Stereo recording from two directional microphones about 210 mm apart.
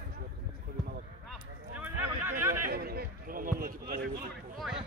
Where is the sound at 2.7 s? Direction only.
45° right (ahead or behind).